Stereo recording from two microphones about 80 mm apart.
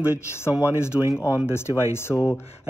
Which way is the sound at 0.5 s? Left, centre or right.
Left.